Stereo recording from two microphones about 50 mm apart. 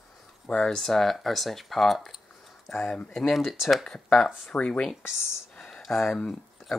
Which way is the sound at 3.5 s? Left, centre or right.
Centre.